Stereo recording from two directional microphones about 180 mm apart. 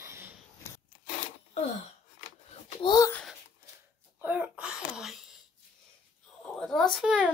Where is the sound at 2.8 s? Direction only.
25° left (ahead or behind).